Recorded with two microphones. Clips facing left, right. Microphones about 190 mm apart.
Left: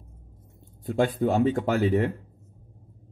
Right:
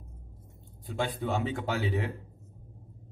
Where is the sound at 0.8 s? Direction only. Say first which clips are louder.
Left 8 dB; 45° left (ahead or behind).